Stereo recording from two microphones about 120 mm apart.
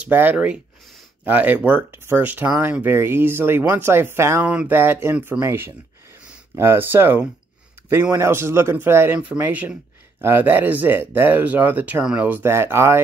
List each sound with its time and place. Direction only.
0.0 s speech: 15° right (ahead or behind)